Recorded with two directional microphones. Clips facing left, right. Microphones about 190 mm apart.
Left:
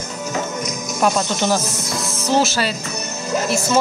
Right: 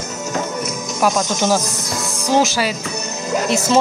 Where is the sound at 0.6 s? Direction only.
Centre (ahead or behind).